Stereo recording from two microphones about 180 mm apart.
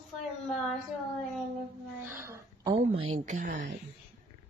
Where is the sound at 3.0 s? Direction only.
40° right (ahead or behind).